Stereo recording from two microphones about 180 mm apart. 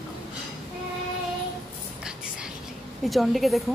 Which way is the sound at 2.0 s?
5° right (ahead or behind).